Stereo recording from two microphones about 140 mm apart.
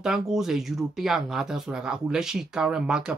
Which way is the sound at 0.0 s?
5° right (ahead or behind).